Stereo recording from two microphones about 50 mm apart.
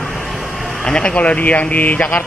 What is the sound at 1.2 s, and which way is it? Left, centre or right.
A man's voice, left.